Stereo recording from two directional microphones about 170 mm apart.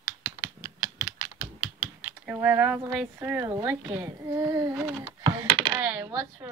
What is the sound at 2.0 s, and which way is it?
A woman's voice, 10° right (ahead or behind).